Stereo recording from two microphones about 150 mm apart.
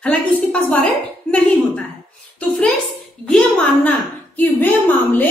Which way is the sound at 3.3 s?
5° left (ahead or behind).